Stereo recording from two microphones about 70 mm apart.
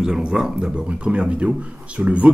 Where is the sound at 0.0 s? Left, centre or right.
Centre.